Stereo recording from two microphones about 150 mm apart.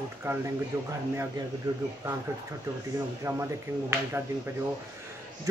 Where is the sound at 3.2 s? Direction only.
15° right (ahead or behind).